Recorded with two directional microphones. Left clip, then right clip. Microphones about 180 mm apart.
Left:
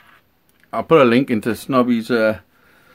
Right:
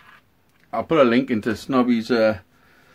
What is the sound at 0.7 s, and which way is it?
Speech, 45° left (ahead or behind).